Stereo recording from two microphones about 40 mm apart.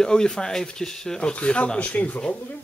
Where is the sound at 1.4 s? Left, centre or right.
Left.